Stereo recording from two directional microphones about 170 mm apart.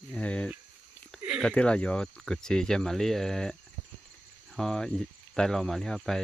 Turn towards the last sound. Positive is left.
turn(degrees=0)  # may be behind; listen again after turning